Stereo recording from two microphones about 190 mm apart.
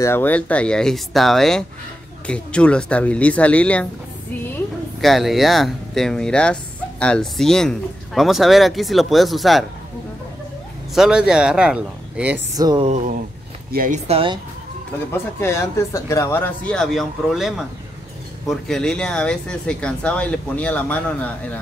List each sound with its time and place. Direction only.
0.0 s speech: 10° left (ahead or behind)
5.0 s speech: centre (ahead or behind)
11.0 s speech: 5° right (ahead or behind)
12.5 s speech: 20° right (ahead or behind)
12.8 s speech: 40° right (ahead or behind)
15.0 s speech: 15° left (ahead or behind)